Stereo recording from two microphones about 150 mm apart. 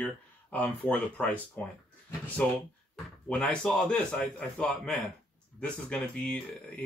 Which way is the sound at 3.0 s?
5° left (ahead or behind).